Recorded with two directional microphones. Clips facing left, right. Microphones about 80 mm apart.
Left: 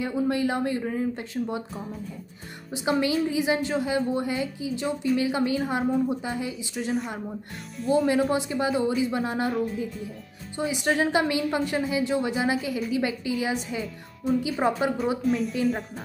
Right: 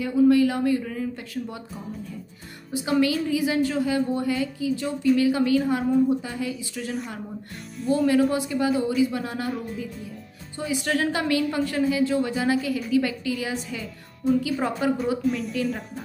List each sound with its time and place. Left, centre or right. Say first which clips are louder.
0.0 s a woman's voice: right 7 dB; left
2.7 s a woman's voice: right 2 dB; left
7.8 s speech: right 1 dB; centre
8.2 s a woman's voice: right 2 dB; left
10.7 s a woman's voice: left 1 dB; left
15.2 s speech: left 1 dB; centre